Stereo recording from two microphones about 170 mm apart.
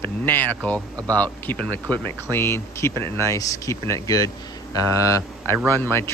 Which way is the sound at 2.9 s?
25° right (ahead or behind).